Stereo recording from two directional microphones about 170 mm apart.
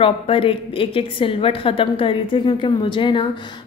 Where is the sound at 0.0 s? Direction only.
30° left (ahead or behind).